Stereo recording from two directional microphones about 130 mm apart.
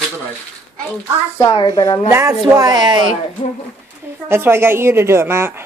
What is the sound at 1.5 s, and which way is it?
Speech, 35° left (ahead or behind).